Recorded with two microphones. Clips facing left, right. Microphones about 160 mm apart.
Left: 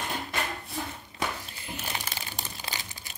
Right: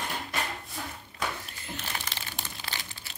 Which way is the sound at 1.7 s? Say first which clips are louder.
Left 2 dB; 15° left (ahead or behind).